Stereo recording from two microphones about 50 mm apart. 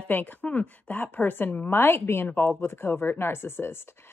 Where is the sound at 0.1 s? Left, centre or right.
Left.